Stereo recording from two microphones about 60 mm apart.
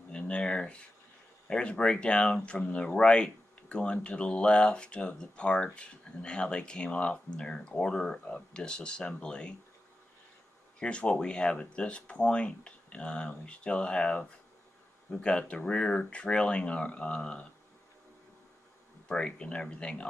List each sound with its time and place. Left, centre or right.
0.2 s a sound: centre
1.5 s speech: centre
10.8 s speech: centre
19.0 s speech: centre